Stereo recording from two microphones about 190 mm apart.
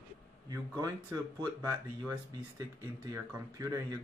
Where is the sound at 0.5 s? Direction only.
15° right (ahead or behind).